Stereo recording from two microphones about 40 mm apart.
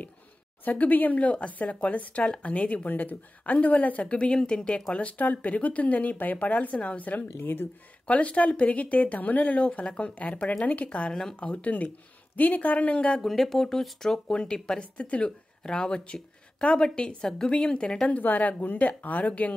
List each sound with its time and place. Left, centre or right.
0.7 s speech: left
4.4 s speech: centre; by 7.2 s left
7.3 s speech: left
8.1 s speech: left
9.7 s speech: left
13.2 s speech: centre
14.1 s speech: left
14.8 s speech: left
15.6 s speech: centre
18.0 s speech: left